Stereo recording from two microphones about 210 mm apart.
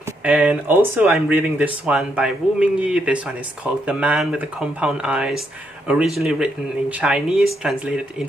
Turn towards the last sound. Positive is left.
turn(degrees=-5)  # may be behind; listen again after turning